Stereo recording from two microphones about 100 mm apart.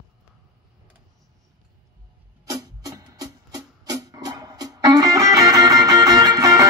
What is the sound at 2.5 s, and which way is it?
Music, 35° right (ahead or behind).